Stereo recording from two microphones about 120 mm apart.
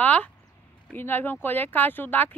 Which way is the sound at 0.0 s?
10° left (ahead or behind).